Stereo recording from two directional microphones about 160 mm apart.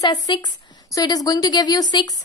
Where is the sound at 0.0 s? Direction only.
25° left (ahead or behind).